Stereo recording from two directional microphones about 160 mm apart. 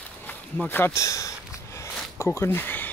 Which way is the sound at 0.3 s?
10° left (ahead or behind).